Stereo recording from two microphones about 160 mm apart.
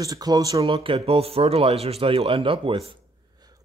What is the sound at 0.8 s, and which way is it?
Speech, 40° right (ahead or behind).